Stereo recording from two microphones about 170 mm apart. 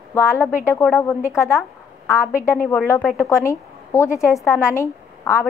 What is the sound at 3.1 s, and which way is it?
A woman's voice, 15° left (ahead or behind).